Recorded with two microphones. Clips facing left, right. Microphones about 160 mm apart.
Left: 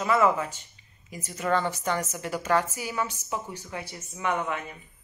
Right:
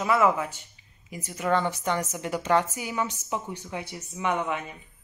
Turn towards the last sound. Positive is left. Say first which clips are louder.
# right 1 dB
turn(degrees=-15)  # may be behind; listen again after turning